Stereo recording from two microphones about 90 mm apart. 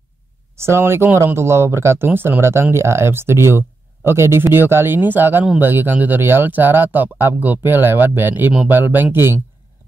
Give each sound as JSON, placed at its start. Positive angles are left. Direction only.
{"t": 0.6, "sound": "speech", "side_deg": -30}